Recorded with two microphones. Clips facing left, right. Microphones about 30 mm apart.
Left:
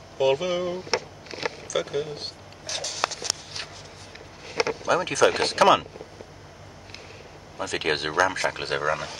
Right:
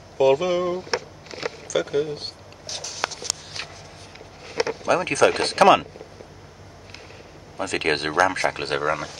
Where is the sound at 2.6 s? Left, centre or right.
Left.